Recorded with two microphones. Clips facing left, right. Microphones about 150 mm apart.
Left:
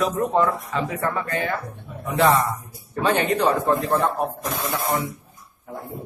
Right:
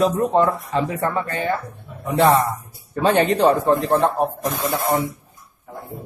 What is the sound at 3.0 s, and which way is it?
Speech, 35° right (ahead or behind).